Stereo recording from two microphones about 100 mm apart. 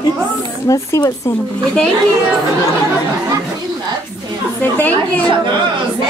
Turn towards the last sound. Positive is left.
turn(degrees=20)  # may be behind; listen again after turning